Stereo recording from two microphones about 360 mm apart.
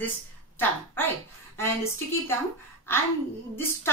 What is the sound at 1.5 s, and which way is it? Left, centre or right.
Speech, centre.